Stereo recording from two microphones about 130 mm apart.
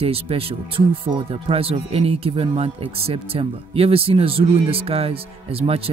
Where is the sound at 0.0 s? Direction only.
45° right (ahead or behind).